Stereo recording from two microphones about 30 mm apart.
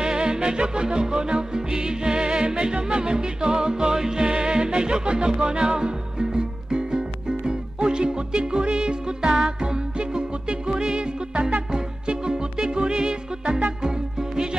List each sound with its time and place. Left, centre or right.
0.0 s music: right